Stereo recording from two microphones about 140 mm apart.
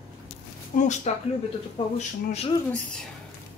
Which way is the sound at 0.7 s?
70° left (ahead or behind).